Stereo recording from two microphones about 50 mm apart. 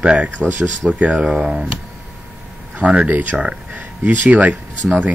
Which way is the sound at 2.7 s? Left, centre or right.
Right.